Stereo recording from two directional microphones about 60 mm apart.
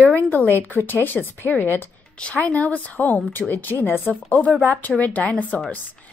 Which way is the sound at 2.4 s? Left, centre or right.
Left.